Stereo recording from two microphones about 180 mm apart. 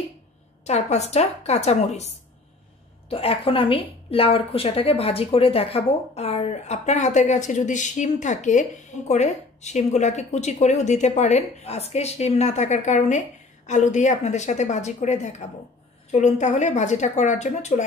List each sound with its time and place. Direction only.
0.7 s a woman's voice: 40° left (ahead or behind)
3.1 s a woman's voice: 30° left (ahead or behind)